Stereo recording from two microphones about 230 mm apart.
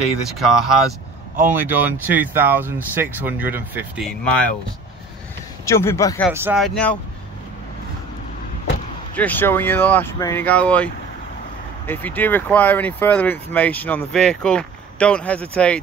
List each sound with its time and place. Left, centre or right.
0.2 s speech: centre
5.7 s speech: centre
6.3 s speech: centre
6.6 s speech: centre
9.1 s speech: centre